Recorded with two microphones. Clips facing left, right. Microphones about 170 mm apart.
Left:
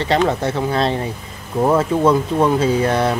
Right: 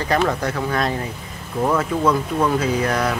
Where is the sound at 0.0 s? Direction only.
25° left (ahead or behind).